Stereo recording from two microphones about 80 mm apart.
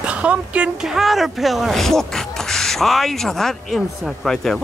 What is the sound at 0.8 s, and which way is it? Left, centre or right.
Speech, centre.